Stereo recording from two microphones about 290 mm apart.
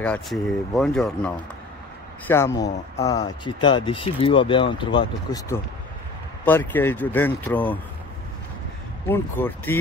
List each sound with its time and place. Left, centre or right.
0.0 s speech: centre
9.1 s speech: centre